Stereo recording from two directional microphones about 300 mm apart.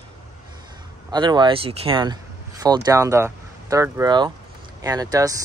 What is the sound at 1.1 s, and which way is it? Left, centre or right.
Speech, centre.